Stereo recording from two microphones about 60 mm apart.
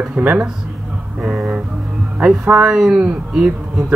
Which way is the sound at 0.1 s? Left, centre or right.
Right.